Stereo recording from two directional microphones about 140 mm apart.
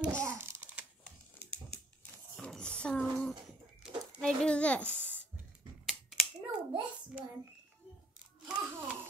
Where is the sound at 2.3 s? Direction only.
5° left (ahead or behind).